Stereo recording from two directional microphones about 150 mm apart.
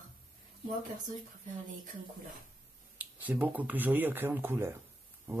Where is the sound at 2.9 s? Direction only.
10° right (ahead or behind).